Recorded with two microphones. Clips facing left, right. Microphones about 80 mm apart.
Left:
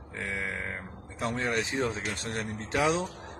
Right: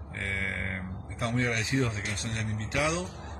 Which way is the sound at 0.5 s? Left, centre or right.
Centre.